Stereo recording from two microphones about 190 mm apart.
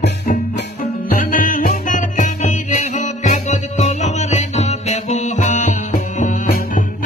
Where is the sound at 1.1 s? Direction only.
45° left (ahead or behind).